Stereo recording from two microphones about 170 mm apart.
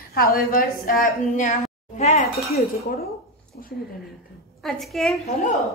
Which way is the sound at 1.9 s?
40° left (ahead or behind).